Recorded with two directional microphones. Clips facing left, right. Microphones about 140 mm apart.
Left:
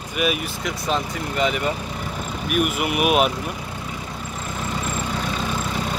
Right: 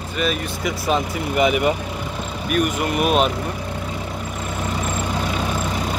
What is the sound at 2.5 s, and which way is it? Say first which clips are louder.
Speech: right 2 dB; 5° left (ahead or behind).